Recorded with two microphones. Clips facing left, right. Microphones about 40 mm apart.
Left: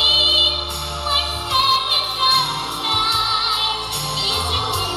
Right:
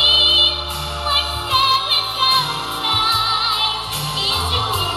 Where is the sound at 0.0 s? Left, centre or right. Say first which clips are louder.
Right 2 dB; right.